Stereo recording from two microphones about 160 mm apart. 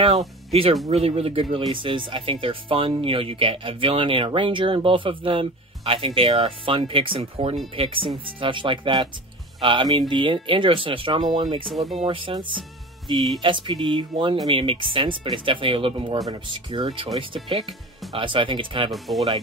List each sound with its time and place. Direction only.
0.5 s speech: 35° right (ahead or behind)
18.9 s speech: centre (ahead or behind)